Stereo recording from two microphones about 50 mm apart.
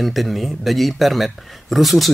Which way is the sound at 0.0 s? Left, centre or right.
Centre.